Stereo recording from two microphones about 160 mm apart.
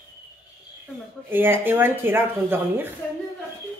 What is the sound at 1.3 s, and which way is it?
Speech, 15° right (ahead or behind).